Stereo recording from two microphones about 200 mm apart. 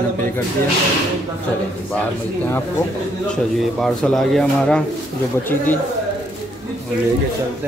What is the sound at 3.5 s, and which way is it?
Speech, centre (ahead or behind).